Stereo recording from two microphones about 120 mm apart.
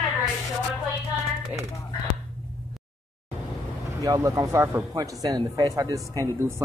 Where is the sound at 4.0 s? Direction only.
25° right (ahead or behind).